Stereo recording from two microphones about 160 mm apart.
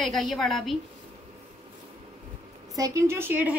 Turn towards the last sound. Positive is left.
turn(degrees=-10)  # may be behind; listen again after turning